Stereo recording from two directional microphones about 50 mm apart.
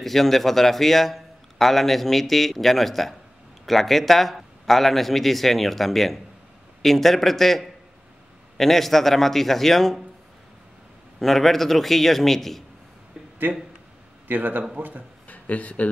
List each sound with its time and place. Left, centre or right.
0.0 s a man's voice: centre
11.1 s a man's voice: centre
13.5 s a man's voice: right
15.2 s speech: left